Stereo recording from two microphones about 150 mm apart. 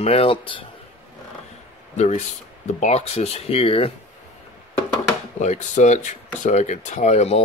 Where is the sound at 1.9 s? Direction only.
50° left (ahead or behind).